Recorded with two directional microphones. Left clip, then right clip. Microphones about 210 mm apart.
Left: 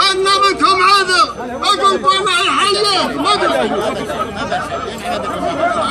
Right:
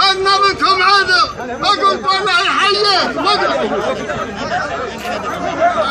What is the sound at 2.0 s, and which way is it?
Chatter, 50° left (ahead or behind).